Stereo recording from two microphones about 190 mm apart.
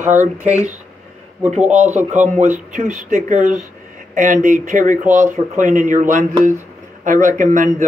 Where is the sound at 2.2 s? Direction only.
40° right (ahead or behind).